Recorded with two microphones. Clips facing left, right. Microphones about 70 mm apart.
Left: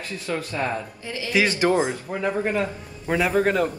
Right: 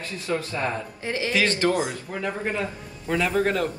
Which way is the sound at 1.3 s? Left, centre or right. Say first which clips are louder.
Left 3 dB; centre.